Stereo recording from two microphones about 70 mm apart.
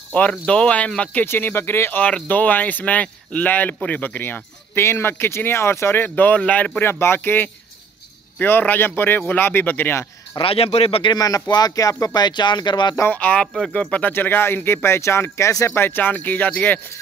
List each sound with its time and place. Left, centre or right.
0.1 s speech: centre
1.2 s speech: left
6.0 s speech: left
6.8 s speech: left
11.1 s speech: left
13.0 s speech: left
14.1 s speech: left